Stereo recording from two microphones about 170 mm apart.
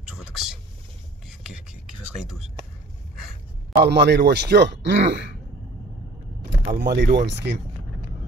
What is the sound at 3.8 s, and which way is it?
Speech, 80° right.